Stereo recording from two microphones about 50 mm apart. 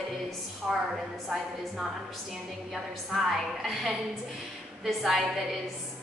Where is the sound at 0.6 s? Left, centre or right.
Centre.